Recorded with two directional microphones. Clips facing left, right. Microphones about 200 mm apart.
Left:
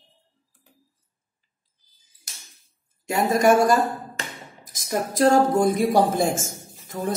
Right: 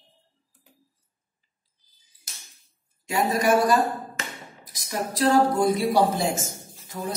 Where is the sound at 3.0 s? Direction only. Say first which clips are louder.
Left 4 dB; 45° left (ahead or behind).